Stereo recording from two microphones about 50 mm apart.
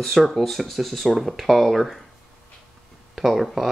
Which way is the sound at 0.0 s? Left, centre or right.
Centre.